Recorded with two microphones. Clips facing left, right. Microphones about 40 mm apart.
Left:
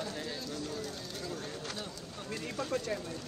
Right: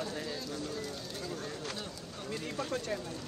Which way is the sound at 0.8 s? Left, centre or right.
Centre.